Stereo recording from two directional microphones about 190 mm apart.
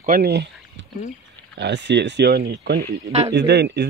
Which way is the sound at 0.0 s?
55° right (ahead or behind).